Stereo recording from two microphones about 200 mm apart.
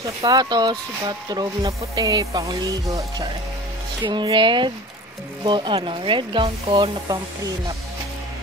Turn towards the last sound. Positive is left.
turn(degrees=-20)  # may be behind; listen again after turning